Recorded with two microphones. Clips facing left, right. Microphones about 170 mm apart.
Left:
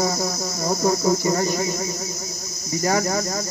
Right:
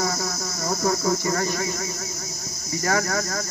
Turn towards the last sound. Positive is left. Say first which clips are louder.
# left 3 dB
turn(degrees=20)  # may be behind; listen again after turning